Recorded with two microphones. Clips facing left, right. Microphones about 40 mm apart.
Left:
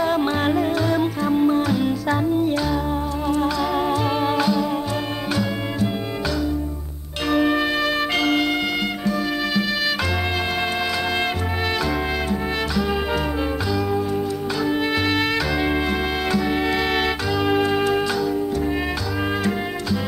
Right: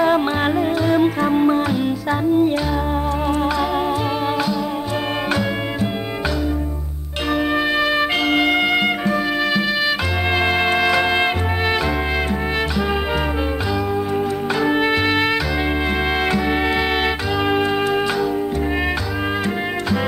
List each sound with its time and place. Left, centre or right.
0.0 s music: right
0.9 s music: right
1.7 s music: centre
4.4 s music: centre
7.2 s music: centre
8.3 s music: right
14.6 s music: right
16.3 s music: right